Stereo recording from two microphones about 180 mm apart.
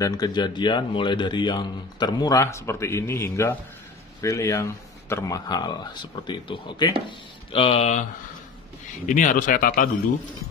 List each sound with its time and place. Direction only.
0.0 s speech: 20° left (ahead or behind)
9.0 s speech: 45° left (ahead or behind)